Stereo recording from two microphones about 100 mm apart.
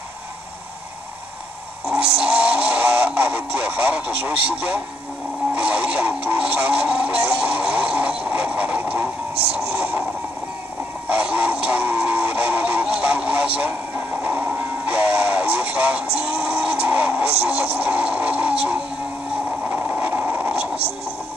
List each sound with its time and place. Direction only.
1.9 s radio: 10° right (ahead or behind)
5.5 s a sound: 10° right (ahead or behind)
11.1 s chicken: 10° right (ahead or behind)
14.2 s speech: 20° right (ahead or behind)
19.7 s vehicle: 15° right (ahead or behind)